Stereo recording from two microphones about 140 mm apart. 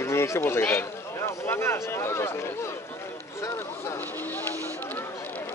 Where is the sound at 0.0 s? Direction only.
20° left (ahead or behind).